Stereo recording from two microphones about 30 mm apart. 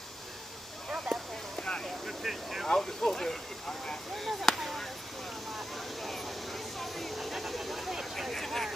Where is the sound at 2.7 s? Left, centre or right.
Centre.